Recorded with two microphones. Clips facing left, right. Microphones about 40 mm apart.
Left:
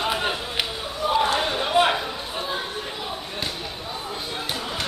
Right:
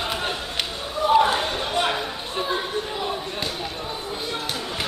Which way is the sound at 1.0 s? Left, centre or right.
Centre.